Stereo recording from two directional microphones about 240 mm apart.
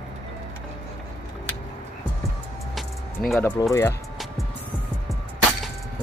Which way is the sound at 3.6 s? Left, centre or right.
Centre.